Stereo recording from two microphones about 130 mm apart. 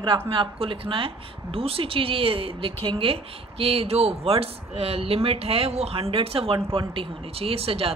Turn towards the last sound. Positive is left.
turn(degrees=-50)  # may be behind; listen again after turning